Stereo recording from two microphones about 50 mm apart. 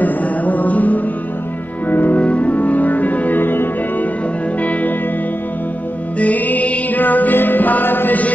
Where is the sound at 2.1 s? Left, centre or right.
Left.